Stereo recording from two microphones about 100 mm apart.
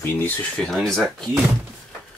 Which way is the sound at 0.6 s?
5° left (ahead or behind).